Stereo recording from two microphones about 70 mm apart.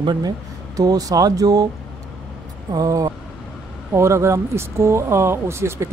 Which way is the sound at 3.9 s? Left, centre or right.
Right.